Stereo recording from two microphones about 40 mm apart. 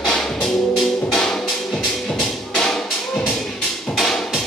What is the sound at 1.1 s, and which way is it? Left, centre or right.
Music, centre.